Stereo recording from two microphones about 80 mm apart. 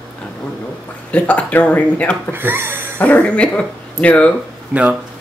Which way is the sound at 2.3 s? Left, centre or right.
Right.